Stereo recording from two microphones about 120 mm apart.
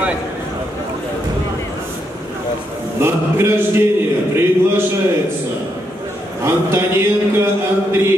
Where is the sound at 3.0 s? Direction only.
20° right (ahead or behind).